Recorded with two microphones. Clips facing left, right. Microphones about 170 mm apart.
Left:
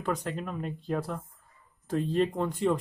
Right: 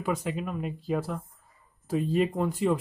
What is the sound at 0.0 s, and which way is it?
Speech, 5° right (ahead or behind).